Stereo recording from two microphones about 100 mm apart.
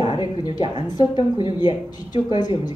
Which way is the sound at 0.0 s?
50° left (ahead or behind).